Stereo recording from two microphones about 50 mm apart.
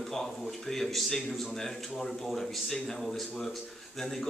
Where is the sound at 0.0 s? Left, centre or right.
Centre.